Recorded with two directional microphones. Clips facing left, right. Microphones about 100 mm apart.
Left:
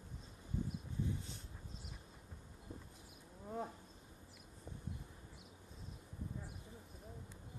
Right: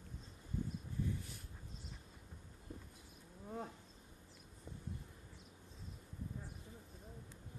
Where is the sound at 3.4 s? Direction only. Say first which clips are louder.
Left 2 dB; 5° left (ahead or behind).